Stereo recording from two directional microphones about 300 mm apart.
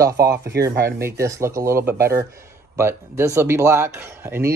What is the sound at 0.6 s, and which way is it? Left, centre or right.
Speech, centre.